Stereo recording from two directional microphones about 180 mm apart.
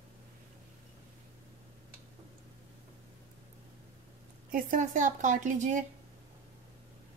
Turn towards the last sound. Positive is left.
turn(degrees=-45)  # may be behind; listen again after turning